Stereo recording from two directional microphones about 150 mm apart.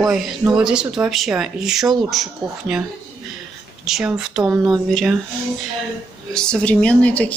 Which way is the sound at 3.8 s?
5° right (ahead or behind).